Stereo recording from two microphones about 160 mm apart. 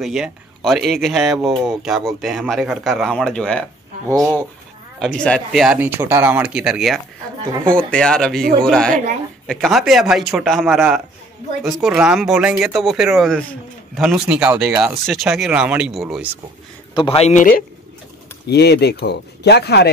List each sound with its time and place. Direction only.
0.0 s speech: centre (ahead or behind)
4.9 s speech: 5° left (ahead or behind)
16.9 s speech: 35° left (ahead or behind); by 17.6 s 60° left (ahead or behind)
18.5 s speech: 90° left